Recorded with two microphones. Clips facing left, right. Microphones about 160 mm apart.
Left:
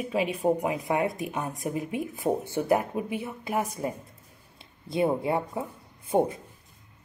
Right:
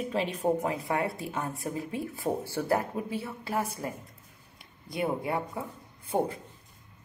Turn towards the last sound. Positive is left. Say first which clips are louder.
# left 4 dB
turn(degrees=20)  # may be behind; listen again after turning